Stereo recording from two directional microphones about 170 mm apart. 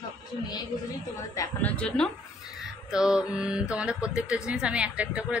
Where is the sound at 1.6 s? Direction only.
5° left (ahead or behind).